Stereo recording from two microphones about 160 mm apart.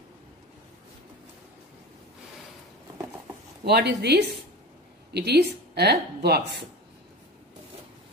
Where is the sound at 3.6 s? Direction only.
90° right.